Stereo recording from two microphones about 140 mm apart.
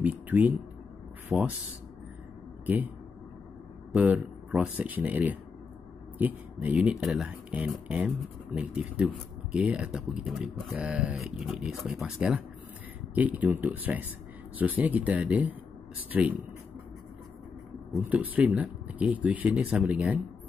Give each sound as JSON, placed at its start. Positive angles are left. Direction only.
{"t": 0.0, "sound": "a sound", "side_deg": -10}
{"t": 1.3, "sound": "speech", "side_deg": -20}
{"t": 2.6, "sound": "speech", "side_deg": -10}
{"t": 3.9, "sound": "speech", "side_deg": -10}
{"t": 17.9, "sound": "speech", "side_deg": -10}